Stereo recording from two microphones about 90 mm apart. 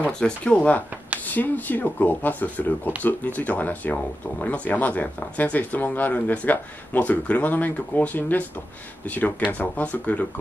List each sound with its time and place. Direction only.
0.0 s speech: 15° left (ahead or behind)